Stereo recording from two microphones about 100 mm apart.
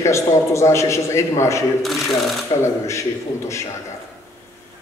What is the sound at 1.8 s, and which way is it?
Speech, centre (ahead or behind).